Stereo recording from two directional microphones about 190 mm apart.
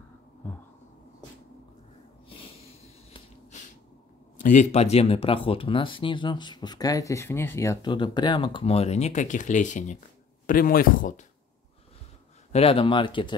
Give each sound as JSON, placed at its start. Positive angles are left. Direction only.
{"t": 2.2, "sound": "snort", "side_deg": 30}
{"t": 4.4, "sound": "speech", "side_deg": 40}
{"t": 12.5, "sound": "speech", "side_deg": 30}